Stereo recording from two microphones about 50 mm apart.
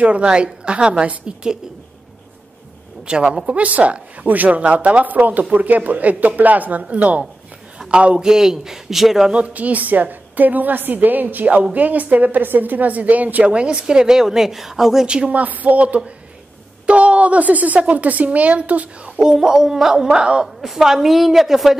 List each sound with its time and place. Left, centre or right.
0.0 s a woman's voice: right
3.1 s a woman's voice: centre
7.8 s a sound: centre
8.2 s a woman's voice: centre
9.3 s a woman's voice: right
13.5 s a woman's voice: right
15.0 s a woman's voice: right
19.1 s a woman's voice: centre
20.6 s a woman's voice: centre